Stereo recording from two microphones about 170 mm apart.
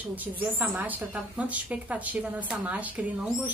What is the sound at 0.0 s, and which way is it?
A woman's voice, 10° right (ahead or behind).